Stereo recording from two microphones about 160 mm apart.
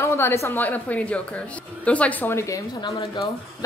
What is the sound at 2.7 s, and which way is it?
Speech, 30° left (ahead or behind).